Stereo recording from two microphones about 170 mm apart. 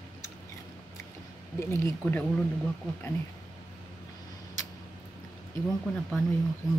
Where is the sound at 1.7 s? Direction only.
15° left (ahead or behind).